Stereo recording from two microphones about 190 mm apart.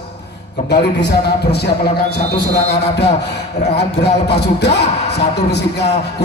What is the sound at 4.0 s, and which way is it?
Speech, 60° left (ahead or behind).